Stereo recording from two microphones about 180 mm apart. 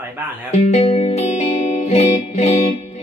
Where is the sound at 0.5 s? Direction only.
35° left (ahead or behind).